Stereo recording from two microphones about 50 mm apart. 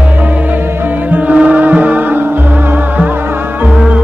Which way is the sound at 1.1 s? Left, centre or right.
Right.